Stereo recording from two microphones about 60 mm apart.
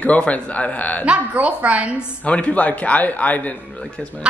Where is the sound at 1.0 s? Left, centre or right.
Centre.